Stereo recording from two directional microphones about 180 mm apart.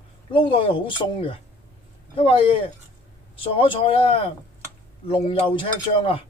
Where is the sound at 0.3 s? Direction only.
30° left (ahead or behind).